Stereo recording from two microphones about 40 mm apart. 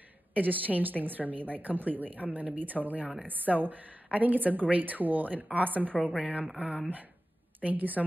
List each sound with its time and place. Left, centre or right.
0.3 s a woman's voice: right
6.5 s speech: right
7.6 s a woman's voice: right